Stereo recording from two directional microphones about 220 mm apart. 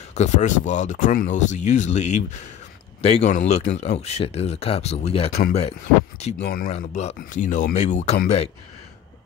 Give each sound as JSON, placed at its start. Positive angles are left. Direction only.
{"t": 0.1, "sound": "speech", "side_deg": 30}
{"t": 6.4, "sound": "speech", "side_deg": 40}